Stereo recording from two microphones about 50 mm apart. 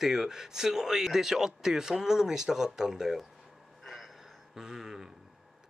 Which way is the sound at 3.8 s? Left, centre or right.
Centre.